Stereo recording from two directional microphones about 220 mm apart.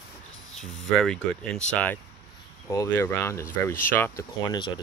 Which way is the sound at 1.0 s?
5° left (ahead or behind).